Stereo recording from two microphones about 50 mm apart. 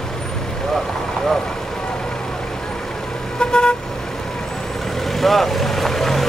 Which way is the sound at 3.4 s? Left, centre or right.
Centre.